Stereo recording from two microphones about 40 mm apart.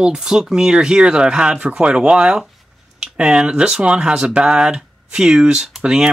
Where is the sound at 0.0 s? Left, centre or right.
Centre.